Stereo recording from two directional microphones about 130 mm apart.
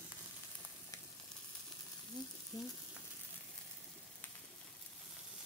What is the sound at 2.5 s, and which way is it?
Speech, 30° left (ahead or behind).